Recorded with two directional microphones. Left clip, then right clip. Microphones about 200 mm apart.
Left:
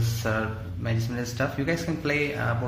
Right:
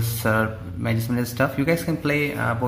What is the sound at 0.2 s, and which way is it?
Speech, 35° right (ahead or behind).